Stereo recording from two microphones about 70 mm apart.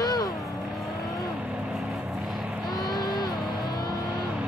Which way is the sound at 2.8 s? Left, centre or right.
Left.